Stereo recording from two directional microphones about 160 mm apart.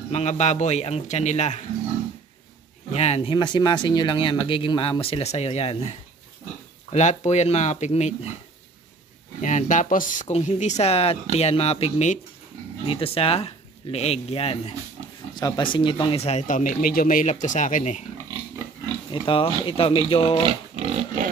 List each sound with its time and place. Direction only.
0.1 s speech: 45° left (ahead or behind)
2.9 s speech: 40° left (ahead or behind)
9.4 s speech: 50° left (ahead or behind)
15.3 s speech: 25° left (ahead or behind); by 18.0 s 50° left (ahead or behind)
19.2 s speech: 35° left (ahead or behind)
20.7 s pig: 45° right (ahead or behind)